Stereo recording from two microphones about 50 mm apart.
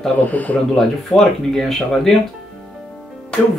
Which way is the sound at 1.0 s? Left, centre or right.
Centre.